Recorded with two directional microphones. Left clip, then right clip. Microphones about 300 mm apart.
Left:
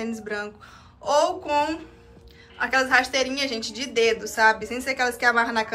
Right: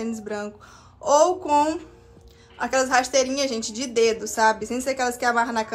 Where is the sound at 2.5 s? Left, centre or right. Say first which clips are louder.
Left 1 dB; centre.